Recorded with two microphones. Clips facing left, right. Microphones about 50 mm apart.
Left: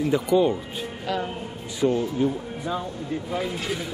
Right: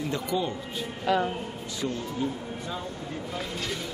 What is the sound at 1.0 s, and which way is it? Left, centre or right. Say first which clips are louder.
Speech: right 3 dB; centre.